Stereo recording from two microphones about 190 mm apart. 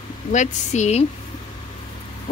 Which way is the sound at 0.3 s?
40° left (ahead or behind).